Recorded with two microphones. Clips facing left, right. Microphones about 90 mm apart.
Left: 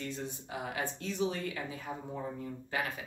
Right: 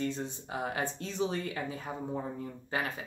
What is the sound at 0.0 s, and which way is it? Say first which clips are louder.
Speech: right 5 dB; 35° right (ahead or behind).